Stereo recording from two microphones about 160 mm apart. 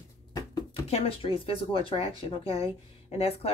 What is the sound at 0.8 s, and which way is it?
Speech, 40° left (ahead or behind).